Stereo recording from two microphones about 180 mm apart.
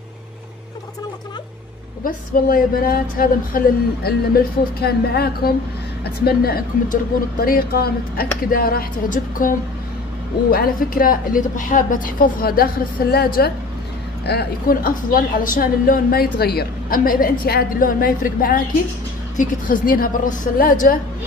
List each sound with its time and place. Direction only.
2.0 s a woman's voice: 50° left (ahead or behind)